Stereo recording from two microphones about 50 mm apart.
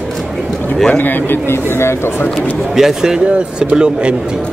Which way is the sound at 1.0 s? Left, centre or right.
Left.